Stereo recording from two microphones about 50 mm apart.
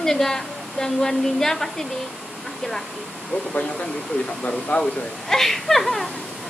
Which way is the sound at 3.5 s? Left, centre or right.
Left.